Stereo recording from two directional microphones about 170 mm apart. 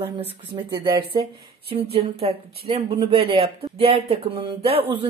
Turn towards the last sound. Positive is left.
turn(degrees=-35)  # may be behind; listen again after turning